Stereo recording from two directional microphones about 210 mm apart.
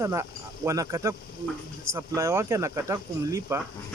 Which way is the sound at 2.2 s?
15° right (ahead or behind).